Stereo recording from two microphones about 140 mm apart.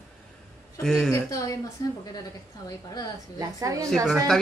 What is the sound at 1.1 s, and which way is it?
Speech, 25° left (ahead or behind).